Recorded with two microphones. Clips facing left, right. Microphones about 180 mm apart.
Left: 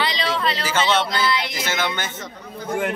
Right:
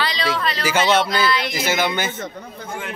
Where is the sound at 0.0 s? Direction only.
20° left (ahead or behind).